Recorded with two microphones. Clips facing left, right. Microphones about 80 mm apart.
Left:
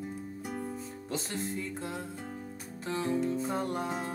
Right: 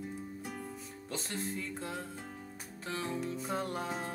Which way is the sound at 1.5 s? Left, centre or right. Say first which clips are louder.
Left 3 dB; centre.